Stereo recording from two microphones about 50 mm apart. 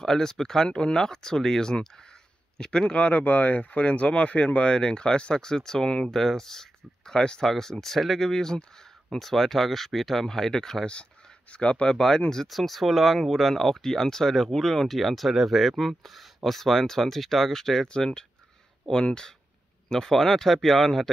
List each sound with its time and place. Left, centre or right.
0.0 s speech: centre
11.5 s speech: left
12.4 s speech: centre